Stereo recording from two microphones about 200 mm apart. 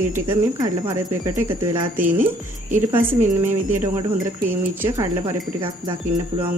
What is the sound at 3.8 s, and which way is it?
Speech, 10° right (ahead or behind).